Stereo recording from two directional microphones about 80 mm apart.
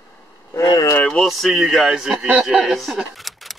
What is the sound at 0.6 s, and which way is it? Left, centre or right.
Speech, left.